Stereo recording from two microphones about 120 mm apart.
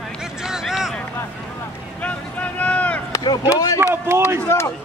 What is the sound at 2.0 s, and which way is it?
Vehicle, 10° left (ahead or behind).